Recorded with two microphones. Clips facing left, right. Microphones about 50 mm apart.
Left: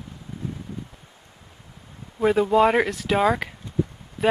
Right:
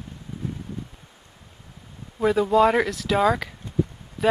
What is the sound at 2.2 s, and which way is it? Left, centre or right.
Speech, centre.